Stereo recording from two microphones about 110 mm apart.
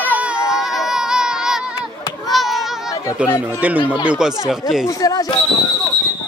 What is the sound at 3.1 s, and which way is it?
Speech, 10° right (ahead or behind).